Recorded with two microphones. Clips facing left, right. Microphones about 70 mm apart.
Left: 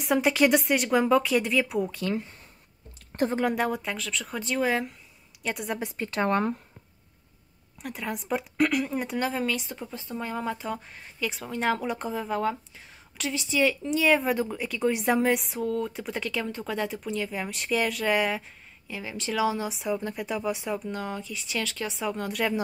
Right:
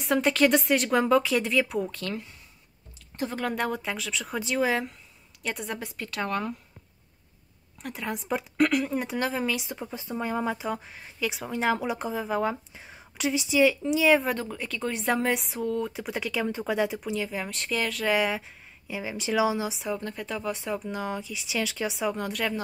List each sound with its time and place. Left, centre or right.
0.0 s speech: centre
3.1 s speech: left
3.5 s speech: centre
5.8 s speech: left
7.8 s speech: centre
12.7 s speech: centre
18.9 s speech: centre